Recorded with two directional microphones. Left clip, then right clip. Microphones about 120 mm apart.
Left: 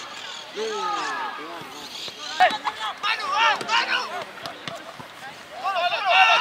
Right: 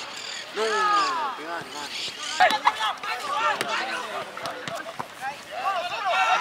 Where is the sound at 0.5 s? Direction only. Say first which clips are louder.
Right 5 dB; 25° right (ahead or behind).